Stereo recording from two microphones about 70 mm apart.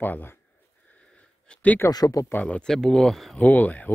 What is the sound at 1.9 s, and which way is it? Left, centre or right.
Speech, left.